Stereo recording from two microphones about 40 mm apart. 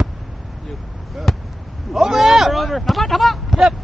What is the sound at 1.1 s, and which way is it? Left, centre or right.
Speech, centre.